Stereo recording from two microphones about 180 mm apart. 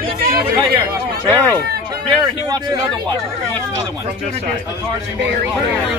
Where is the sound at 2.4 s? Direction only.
25° right (ahead or behind).